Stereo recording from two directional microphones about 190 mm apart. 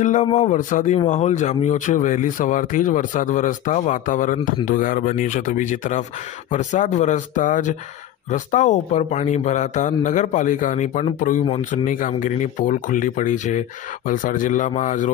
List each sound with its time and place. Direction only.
0.0 s speech: 40° left (ahead or behind)